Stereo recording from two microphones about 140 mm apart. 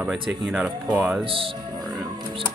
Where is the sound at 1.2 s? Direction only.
40° right (ahead or behind).